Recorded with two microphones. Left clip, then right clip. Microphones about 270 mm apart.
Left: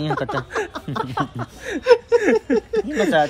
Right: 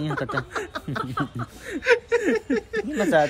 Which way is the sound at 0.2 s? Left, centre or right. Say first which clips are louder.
Left 4 dB; centre.